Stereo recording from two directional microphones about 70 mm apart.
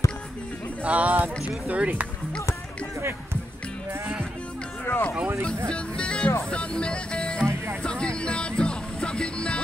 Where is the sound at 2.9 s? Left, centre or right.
Right.